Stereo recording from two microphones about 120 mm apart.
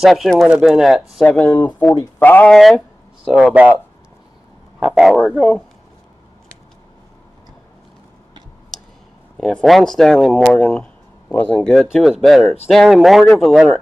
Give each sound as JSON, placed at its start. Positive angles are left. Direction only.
{"t": 0.0, "sound": "speech", "side_deg": 0}
{"t": 2.5, "sound": "speech", "side_deg": 5}
{"t": 4.7, "sound": "speech", "side_deg": -5}
{"t": 9.4, "sound": "speech", "side_deg": 5}